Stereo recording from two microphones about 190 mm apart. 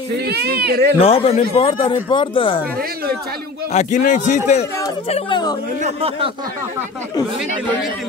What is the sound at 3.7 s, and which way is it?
Speech, 35° left (ahead or behind).